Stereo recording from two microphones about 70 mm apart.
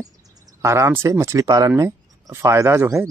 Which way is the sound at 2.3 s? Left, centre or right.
Right.